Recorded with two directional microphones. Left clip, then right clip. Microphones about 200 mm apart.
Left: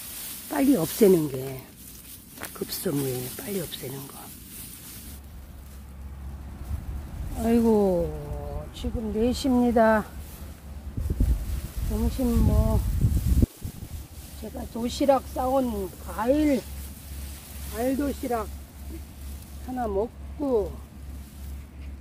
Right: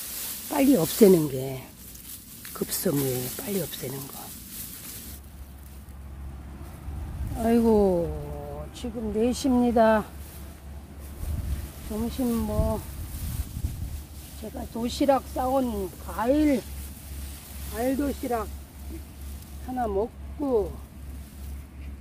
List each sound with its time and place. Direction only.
0.5 s speech: 5° right (ahead or behind)
3.3 s speech: 5° right (ahead or behind)
7.3 s speech: 5° right (ahead or behind); by 10.0 s 10° left (ahead or behind)
11.9 s speech: centre (ahead or behind)
14.4 s speech: 5° right (ahead or behind)
17.7 s speech: 10° left (ahead or behind)
19.7 s speech: centre (ahead or behind)